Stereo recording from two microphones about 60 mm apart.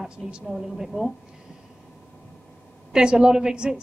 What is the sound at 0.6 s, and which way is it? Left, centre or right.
Speech, centre.